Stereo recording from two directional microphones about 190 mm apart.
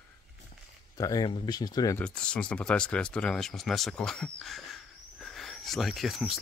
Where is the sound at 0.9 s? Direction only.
20° left (ahead or behind).